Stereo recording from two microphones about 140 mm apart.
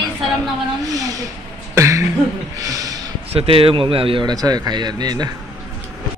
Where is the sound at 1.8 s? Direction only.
20° right (ahead or behind).